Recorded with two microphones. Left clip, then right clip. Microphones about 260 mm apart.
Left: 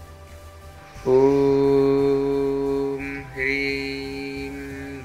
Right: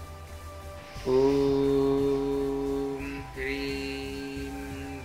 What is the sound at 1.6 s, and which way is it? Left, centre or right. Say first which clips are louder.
Music: left 7 dB; left.